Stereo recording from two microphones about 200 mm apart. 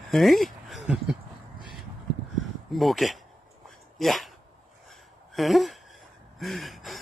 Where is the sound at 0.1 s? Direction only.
Centre (ahead or behind).